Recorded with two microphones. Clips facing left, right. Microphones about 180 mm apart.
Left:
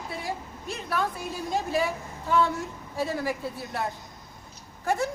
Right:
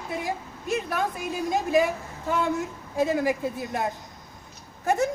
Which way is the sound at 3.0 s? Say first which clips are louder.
Right 5 dB; 15° right (ahead or behind).